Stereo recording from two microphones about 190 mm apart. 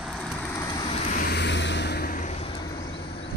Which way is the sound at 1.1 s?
55° left (ahead or behind).